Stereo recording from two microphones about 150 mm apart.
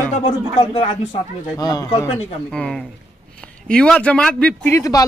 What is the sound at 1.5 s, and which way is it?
Speech, 25° left (ahead or behind).